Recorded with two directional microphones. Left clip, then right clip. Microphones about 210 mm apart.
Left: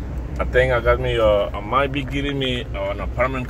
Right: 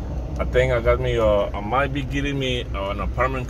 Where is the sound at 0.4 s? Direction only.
Centre (ahead or behind).